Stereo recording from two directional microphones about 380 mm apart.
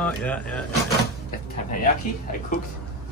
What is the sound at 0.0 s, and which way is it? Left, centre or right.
Speech, centre.